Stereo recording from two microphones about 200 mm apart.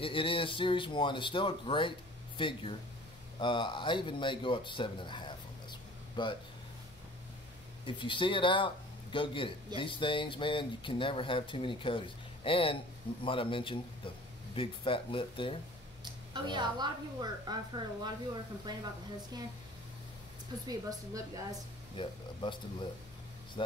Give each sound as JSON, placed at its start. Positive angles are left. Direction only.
{"t": 0.0, "sound": "speech", "side_deg": 25}
{"t": 7.8, "sound": "speech", "side_deg": 25}
{"t": 16.0, "sound": "a woman's voice", "side_deg": -20}
{"t": 20.6, "sound": "a woman's voice", "side_deg": -15}
{"t": 21.9, "sound": "speech", "side_deg": 25}